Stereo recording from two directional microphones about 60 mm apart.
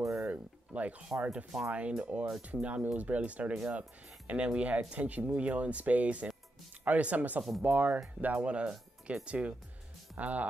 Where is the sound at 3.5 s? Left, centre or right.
Centre.